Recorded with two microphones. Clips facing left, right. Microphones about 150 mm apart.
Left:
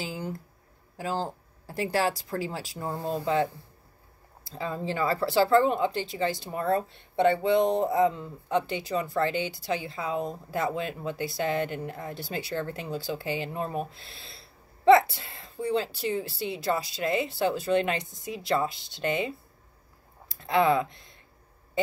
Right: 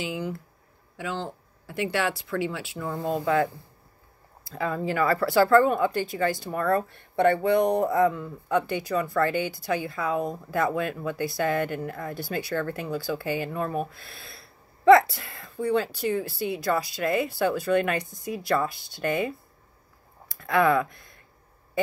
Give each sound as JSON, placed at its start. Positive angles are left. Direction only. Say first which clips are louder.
{"t": 0.0, "sound": "speech", "louder": "right 3 dB", "side_deg": 40}
{"t": 4.5, "sound": "speech", "louder": "right 4 dB", "side_deg": 25}
{"t": 20.3, "sound": "speech", "louder": "right 1 dB", "side_deg": 20}